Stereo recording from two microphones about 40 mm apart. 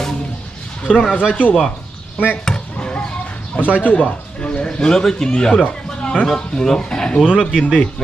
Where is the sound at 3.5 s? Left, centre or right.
Left.